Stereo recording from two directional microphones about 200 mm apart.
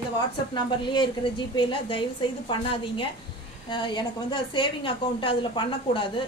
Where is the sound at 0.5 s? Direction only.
20° left (ahead or behind).